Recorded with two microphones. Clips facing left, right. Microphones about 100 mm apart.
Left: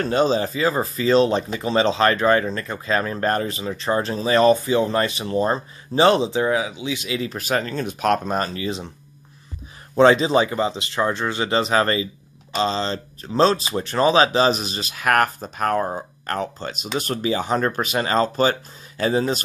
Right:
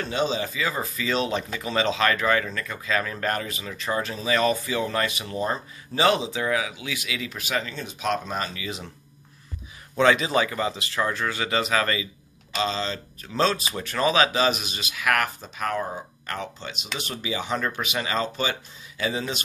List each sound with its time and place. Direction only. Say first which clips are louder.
0.0 s speech: left 7 dB; 40° left (ahead or behind)
9.9 s speech: left 6 dB; 30° left (ahead or behind)